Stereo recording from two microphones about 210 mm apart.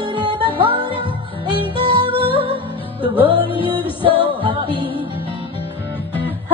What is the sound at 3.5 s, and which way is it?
Music, 25° left (ahead or behind).